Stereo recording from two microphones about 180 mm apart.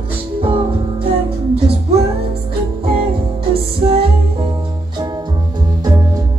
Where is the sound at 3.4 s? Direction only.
30° right (ahead or behind).